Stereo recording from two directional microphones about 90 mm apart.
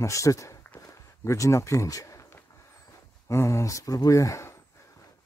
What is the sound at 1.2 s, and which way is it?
Speech, 35° left (ahead or behind).